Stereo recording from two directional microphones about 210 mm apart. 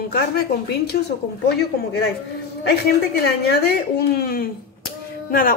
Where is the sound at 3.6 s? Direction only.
45° left (ahead or behind).